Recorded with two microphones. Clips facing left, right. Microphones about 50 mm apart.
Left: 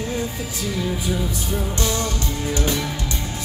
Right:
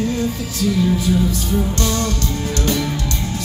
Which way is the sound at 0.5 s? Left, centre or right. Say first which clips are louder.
Right 8 dB; centre.